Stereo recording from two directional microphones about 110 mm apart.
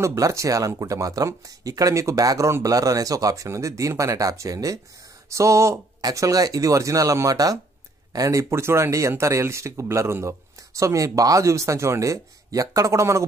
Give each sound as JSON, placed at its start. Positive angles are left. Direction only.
{"t": 0.0, "sound": "speech", "side_deg": -25}